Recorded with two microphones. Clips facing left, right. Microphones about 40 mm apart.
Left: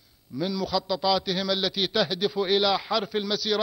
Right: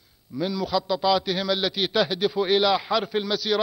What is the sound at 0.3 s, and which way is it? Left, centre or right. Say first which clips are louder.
A man's voice: right 2 dB; centre.